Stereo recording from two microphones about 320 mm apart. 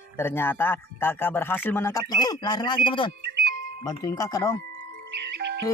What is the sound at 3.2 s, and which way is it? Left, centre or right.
Music, right.